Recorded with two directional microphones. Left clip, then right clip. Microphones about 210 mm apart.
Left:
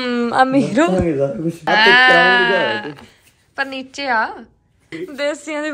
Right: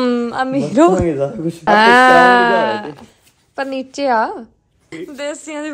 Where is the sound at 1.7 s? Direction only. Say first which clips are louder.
Right 2 dB; 30° right (ahead or behind).